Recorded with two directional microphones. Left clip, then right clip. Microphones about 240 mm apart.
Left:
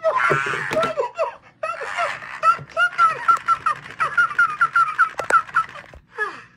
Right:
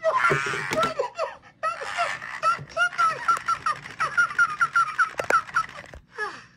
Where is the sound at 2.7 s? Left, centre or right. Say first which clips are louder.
Left 5 dB; centre.